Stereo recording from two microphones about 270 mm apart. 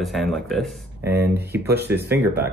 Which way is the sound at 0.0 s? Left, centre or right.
Centre.